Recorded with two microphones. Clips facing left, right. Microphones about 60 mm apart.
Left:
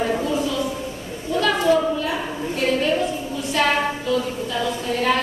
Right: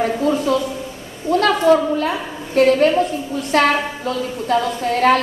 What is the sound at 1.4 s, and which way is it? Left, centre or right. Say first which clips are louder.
A woman's voice: right 3 dB; right.